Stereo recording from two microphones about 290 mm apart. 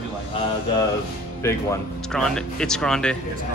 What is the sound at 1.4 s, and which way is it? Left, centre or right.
Speech, centre.